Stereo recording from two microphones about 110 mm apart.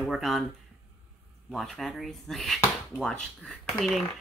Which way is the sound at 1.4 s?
Centre (ahead or behind).